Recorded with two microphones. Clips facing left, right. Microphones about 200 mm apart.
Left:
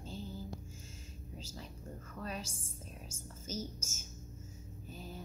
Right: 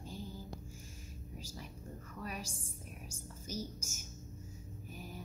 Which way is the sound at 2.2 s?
15° right (ahead or behind).